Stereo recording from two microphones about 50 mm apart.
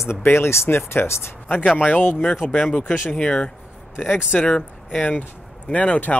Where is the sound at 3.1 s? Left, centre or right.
Left.